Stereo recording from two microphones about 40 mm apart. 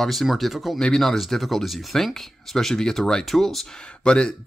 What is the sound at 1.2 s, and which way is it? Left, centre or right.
Speech, centre.